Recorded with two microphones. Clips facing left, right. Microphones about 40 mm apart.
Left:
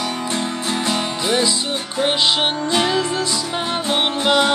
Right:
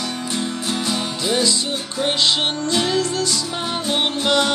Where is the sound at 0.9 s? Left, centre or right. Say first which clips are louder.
Left 2 dB; left.